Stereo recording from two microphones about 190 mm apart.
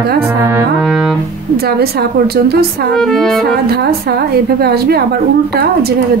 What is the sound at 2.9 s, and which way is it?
Music, 5° left (ahead or behind).